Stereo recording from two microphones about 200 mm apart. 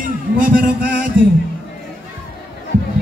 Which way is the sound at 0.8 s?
40° right (ahead or behind).